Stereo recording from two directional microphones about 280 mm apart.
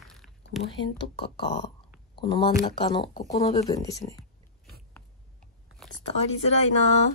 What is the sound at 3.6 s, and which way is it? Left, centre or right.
Speech, centre.